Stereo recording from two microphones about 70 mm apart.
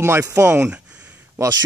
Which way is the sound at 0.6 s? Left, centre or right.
Centre.